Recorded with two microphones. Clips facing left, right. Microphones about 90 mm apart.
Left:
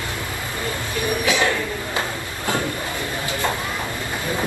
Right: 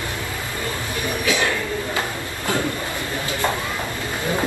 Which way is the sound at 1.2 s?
20° left (ahead or behind).